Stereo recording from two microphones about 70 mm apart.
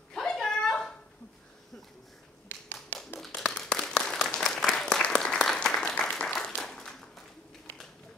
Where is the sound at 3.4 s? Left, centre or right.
Centre.